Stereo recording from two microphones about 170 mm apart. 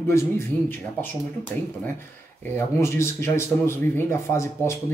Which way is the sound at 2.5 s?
15° left (ahead or behind).